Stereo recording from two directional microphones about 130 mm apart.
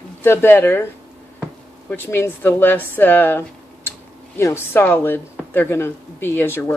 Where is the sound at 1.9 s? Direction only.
15° left (ahead or behind).